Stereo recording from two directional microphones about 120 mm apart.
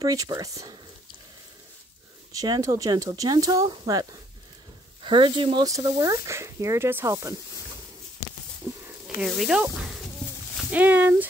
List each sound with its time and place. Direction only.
0.0 s speech: 30° right (ahead or behind)
2.3 s speech: 35° right (ahead or behind)
5.0 s speech: 45° right (ahead or behind)
5.7 s speech: 30° right (ahead or behind)
8.6 s a sound: 30° right (ahead or behind)
9.0 s speech: 5° right (ahead or behind)